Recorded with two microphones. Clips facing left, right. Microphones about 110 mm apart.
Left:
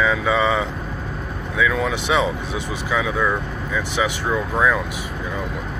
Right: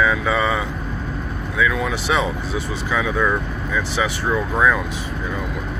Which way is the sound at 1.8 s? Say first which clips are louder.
Left 1 dB; 20° left (ahead or behind).